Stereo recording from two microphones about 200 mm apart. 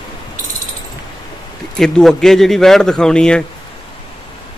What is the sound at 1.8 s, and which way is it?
A man's voice, centre (ahead or behind).